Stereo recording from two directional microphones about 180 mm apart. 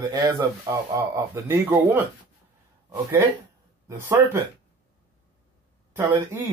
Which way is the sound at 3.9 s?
15° right (ahead or behind).